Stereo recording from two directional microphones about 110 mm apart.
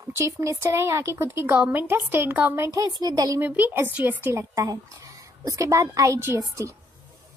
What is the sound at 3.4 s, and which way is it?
A woman's voice, 15° right (ahead or behind).